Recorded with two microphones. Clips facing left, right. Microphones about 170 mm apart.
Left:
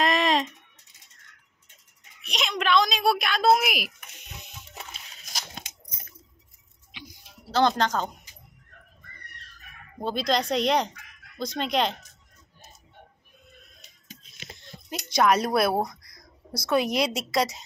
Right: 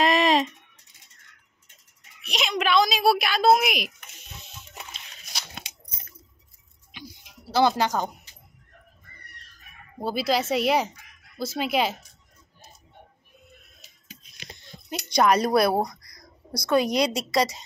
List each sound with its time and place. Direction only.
0.0 s a sound: 5° right (ahead or behind)
2.2 s a woman's voice: 5° right (ahead or behind)
6.9 s a sound: 45° right (ahead or behind)
7.5 s speech: 10° right (ahead or behind)
9.9 s speech: 5° right (ahead or behind)
15.0 s speech: centre (ahead or behind)